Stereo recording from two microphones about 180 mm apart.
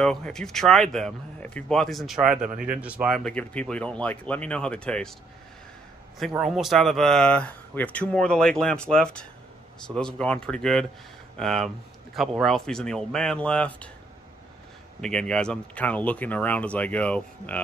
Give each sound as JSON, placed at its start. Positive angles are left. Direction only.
{"t": 0.0, "sound": "speech", "side_deg": 5}
{"t": 2.5, "sound": "speech", "side_deg": -50}
{"t": 2.8, "sound": "speech", "side_deg": -5}
{"t": 6.1, "sound": "speech", "side_deg": 0}
{"t": 15.0, "sound": "speech", "side_deg": 5}